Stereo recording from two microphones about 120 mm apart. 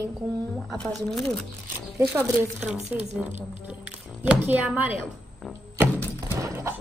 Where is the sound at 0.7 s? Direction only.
5° left (ahead or behind).